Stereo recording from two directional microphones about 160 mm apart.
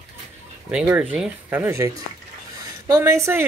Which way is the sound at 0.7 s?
10° right (ahead or behind).